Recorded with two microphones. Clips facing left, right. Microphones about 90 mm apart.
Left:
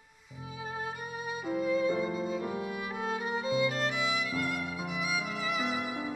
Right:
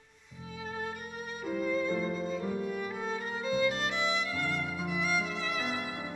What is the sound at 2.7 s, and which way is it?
Music, 5° left (ahead or behind).